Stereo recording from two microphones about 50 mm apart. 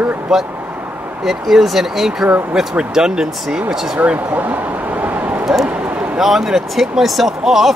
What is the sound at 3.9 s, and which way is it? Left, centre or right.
Speech, right.